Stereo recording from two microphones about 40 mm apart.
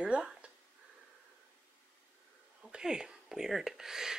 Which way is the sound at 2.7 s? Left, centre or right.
Centre.